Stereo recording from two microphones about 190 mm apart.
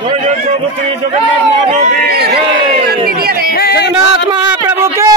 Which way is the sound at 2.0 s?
55° right (ahead or behind).